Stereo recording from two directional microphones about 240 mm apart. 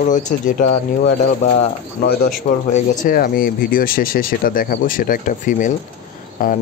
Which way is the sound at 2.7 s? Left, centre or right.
Left.